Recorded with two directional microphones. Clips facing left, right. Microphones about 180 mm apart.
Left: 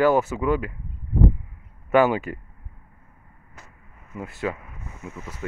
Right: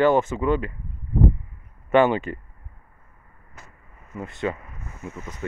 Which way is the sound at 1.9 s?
5° left (ahead or behind).